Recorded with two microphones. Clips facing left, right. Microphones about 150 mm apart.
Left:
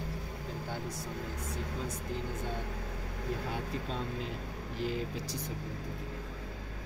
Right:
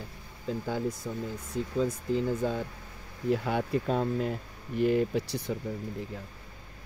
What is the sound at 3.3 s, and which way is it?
Speech, 70° right (ahead or behind).